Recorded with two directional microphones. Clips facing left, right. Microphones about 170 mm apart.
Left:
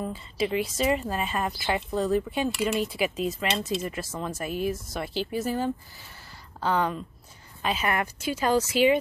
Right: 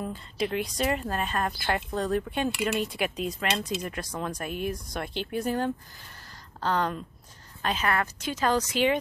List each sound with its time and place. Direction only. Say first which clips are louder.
0.0 s speech: left 2 dB; 5° left (ahead or behind)